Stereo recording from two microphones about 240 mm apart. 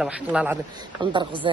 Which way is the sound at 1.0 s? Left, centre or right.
Right.